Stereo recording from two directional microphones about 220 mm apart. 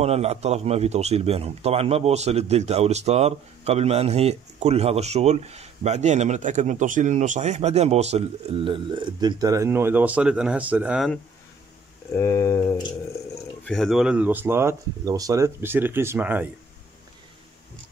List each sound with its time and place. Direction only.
0.0 s a man's voice: 30° right (ahead or behind); by 11.1 s 5° right (ahead or behind)
12.1 s speech: 10° left (ahead or behind)
13.7 s speech: centre (ahead or behind)